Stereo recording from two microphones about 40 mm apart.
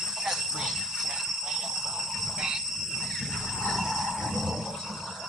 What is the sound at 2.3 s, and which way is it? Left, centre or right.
Insect, centre.